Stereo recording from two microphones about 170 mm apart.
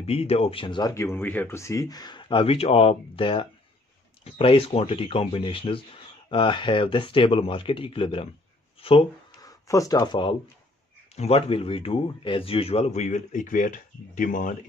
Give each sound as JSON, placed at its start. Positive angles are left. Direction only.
{"t": 0.0, "sound": "speech", "side_deg": 35}
{"t": 8.7, "sound": "a sound", "side_deg": 35}
{"t": 9.4, "sound": "speech", "side_deg": 20}